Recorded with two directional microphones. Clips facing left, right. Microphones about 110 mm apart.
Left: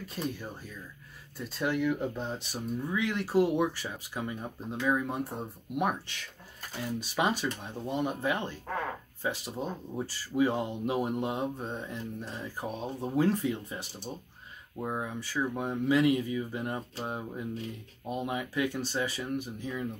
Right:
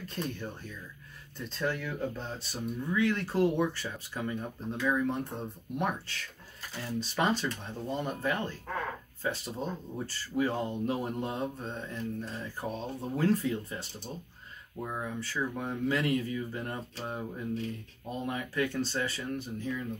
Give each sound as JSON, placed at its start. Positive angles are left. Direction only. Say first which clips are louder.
{"t": 0.0, "sound": "speech", "louder": "left 1 dB", "side_deg": 5}
{"t": 1.5, "sound": "speech", "louder": "left 5 dB", "side_deg": 15}
{"t": 15.0, "sound": "speech", "louder": "even", "side_deg": 15}